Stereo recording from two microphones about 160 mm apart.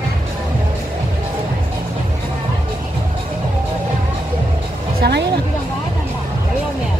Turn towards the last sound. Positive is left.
turn(degrees=-90)